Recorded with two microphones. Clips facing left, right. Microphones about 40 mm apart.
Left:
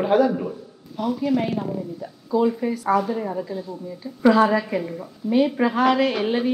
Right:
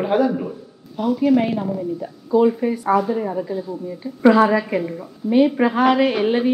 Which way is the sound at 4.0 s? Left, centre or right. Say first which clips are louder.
Right 3 dB; centre.